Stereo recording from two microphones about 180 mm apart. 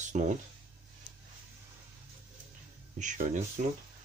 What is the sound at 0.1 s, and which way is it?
Speech, 45° right (ahead or behind).